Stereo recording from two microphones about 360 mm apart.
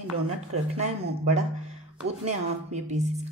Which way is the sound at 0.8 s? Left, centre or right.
Centre.